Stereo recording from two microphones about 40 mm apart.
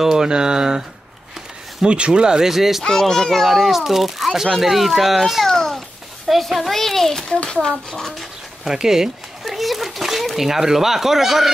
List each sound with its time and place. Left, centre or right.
0.0 s speech: centre
1.9 s speech: right
2.5 s a child's voice: centre
2.8 s a child's voice: centre
5.5 s a sound: centre
6.2 s a sound: centre
7.6 s speech: centre
8.6 s speech: centre
9.4 s splash: centre